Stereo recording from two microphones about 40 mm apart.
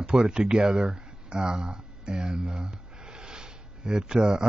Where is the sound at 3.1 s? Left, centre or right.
Right.